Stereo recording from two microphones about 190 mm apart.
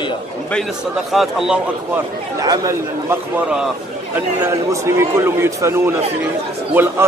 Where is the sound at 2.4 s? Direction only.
20° right (ahead or behind).